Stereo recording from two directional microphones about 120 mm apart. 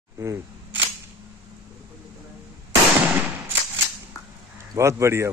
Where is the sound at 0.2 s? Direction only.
20° right (ahead or behind).